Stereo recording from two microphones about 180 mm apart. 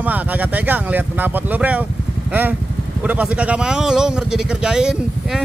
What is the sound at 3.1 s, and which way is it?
Speech, 10° right (ahead or behind).